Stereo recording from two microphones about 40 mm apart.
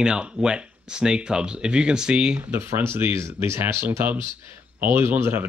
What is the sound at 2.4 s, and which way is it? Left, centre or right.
Speech, right.